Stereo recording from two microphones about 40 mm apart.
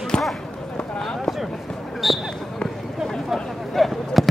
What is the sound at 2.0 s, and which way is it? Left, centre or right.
Basketball bounce, centre.